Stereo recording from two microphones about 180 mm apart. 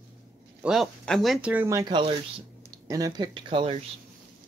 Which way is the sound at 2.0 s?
30° right (ahead or behind).